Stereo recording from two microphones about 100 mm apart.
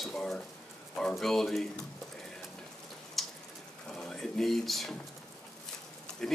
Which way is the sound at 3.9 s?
5° left (ahead or behind).